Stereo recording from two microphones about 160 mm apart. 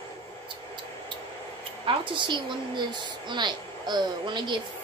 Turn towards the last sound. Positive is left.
turn(degrees=-30)  # may be behind; listen again after turning